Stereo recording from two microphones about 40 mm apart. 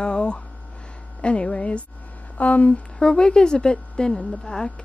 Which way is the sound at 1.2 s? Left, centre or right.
Left.